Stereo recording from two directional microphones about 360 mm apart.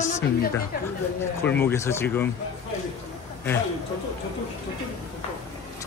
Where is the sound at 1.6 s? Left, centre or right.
Centre.